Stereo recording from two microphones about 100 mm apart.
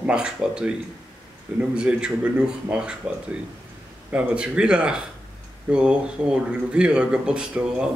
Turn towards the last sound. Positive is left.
turn(degrees=-10)  # may be behind; listen again after turning